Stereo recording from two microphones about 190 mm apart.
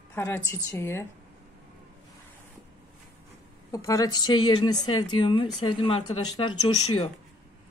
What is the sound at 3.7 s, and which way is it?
A woman's voice, 15° left (ahead or behind).